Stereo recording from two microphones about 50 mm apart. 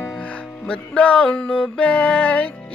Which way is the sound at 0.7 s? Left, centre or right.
Left.